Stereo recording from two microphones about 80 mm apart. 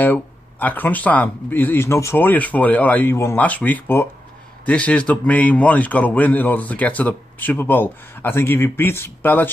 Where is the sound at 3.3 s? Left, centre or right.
Centre.